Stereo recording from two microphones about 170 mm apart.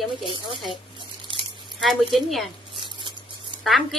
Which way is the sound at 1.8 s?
Centre (ahead or behind).